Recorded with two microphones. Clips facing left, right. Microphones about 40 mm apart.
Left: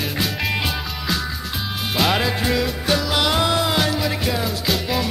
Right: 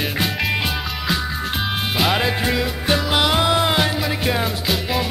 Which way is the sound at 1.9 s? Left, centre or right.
Centre.